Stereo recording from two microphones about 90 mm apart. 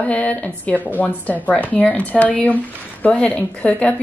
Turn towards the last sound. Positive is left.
turn(degrees=15)  # may be behind; listen again after turning